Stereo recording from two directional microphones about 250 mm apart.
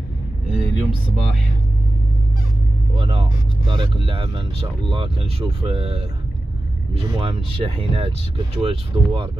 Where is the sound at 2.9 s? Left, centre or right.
Right.